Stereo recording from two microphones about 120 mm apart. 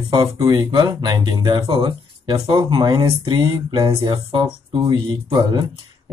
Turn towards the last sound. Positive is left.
turn(degrees=-40)  # may be behind; listen again after turning